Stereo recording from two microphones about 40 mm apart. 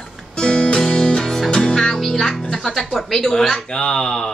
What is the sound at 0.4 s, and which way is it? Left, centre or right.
Music, left.